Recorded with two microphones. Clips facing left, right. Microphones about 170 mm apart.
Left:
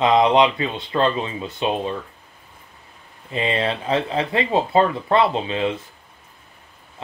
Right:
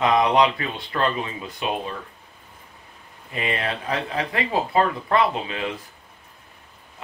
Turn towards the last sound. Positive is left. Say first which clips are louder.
# left 4 dB
turn(degrees=25)  # may be behind; listen again after turning